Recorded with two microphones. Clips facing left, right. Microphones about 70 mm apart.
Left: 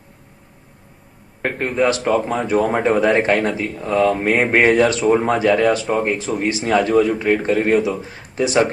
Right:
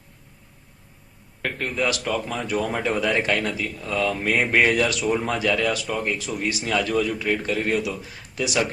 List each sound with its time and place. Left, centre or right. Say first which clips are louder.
1.4 s speech: left 7 dB; left